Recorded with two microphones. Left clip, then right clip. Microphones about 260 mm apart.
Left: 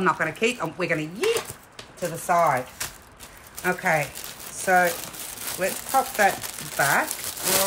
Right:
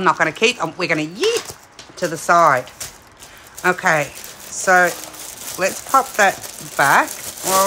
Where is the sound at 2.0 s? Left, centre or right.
Right.